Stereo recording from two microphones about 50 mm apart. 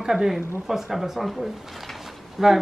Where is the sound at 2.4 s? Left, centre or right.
Centre.